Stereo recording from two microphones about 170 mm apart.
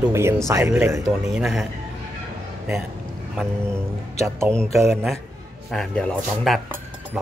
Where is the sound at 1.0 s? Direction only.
Centre (ahead or behind).